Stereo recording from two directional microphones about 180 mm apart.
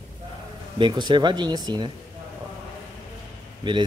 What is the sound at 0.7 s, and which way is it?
Speech, 25° right (ahead or behind).